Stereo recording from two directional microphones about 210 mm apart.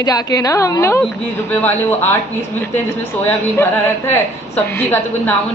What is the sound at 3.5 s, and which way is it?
A woman's voice, 10° left (ahead or behind).